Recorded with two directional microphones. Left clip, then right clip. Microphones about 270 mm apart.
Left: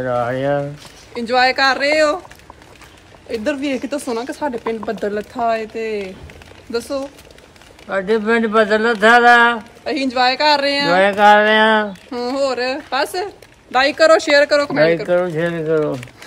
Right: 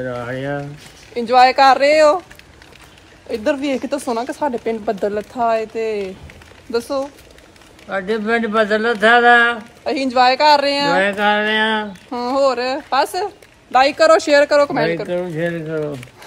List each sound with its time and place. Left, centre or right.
0.0 s speech: centre
1.1 s speech: centre
3.3 s speech: centre
7.9 s speech: centre
9.8 s speech: centre
11.0 s a sound: centre
12.1 s speech: centre
15.0 s speech: centre